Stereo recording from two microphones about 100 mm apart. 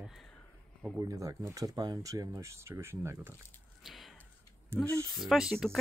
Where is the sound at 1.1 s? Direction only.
35° right (ahead or behind).